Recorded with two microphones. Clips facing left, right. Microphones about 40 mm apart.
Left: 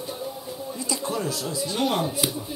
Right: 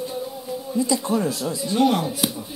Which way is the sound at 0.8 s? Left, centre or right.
Right.